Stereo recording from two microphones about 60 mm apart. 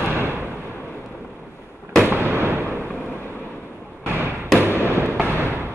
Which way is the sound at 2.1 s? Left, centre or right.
Right.